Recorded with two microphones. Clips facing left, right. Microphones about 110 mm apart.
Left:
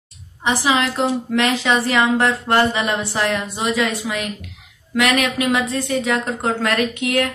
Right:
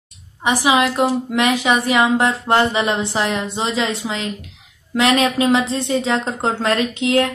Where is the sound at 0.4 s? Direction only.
15° right (ahead or behind).